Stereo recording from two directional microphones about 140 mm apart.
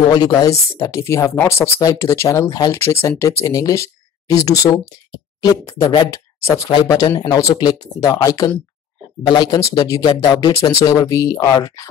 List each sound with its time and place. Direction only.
0.1 s speech: 30° left (ahead or behind)